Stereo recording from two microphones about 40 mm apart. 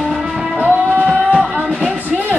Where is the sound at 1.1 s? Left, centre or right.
Right.